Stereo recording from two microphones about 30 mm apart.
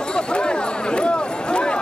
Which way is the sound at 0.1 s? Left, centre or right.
Left.